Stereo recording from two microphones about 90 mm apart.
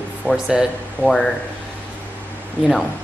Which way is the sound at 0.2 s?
15° right (ahead or behind).